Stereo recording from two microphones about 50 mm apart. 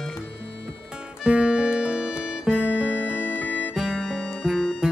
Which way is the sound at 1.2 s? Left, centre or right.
Centre.